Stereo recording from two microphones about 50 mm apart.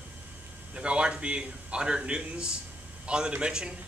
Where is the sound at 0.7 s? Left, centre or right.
Right.